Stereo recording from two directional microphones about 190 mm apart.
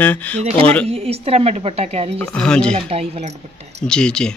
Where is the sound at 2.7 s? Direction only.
30° right (ahead or behind).